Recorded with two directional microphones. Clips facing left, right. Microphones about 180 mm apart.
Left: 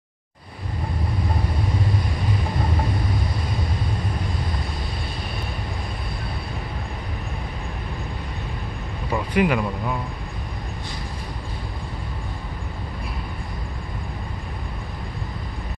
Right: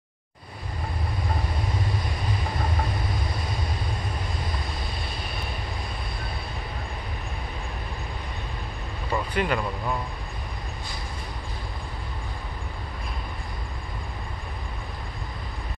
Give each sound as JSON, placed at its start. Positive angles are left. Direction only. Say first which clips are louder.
{"t": 9.1, "sound": "speech", "louder": "left 5 dB", "side_deg": 10}